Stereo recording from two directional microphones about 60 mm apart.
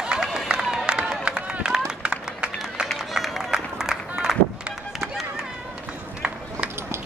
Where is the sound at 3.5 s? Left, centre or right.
Centre.